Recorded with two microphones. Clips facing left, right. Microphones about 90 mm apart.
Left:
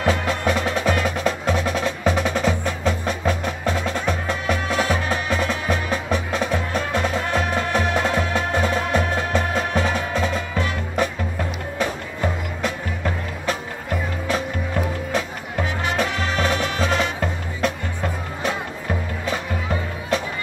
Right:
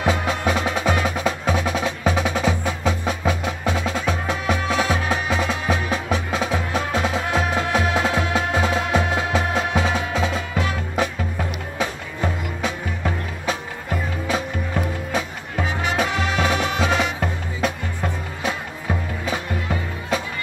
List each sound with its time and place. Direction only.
0.0 s wood block: 5° right (ahead or behind)
12.6 s music: 5° right (ahead or behind)
15.9 s music: 10° right (ahead or behind)